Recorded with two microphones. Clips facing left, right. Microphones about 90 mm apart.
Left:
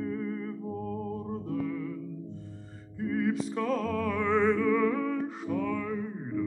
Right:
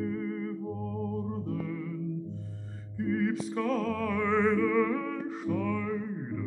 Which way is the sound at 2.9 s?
Centre (ahead or behind).